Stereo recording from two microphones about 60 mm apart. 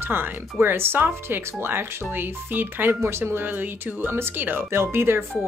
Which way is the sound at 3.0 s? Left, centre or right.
Right.